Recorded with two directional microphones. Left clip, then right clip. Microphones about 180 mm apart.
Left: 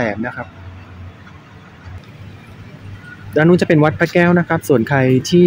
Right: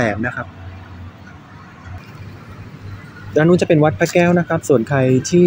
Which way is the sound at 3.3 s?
15° left (ahead or behind).